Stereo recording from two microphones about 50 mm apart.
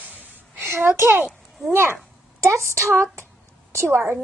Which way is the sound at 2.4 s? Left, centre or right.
Right.